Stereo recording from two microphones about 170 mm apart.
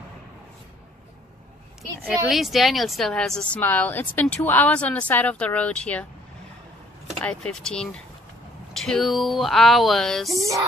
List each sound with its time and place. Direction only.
1.8 s a woman's voice: centre (ahead or behind)
7.2 s speech: 5° left (ahead or behind)
10.3 s music: 20° right (ahead or behind)